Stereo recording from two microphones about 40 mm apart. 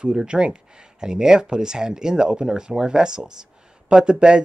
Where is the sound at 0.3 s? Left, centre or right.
Right.